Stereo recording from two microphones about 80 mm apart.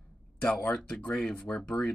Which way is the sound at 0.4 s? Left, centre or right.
Centre.